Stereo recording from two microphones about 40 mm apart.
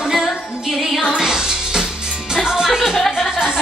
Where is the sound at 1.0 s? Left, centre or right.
Centre.